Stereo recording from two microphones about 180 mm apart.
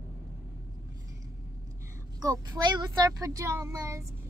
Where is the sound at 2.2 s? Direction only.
20° right (ahead or behind).